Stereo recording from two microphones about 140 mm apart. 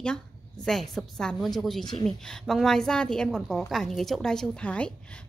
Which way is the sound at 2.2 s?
5° left (ahead or behind).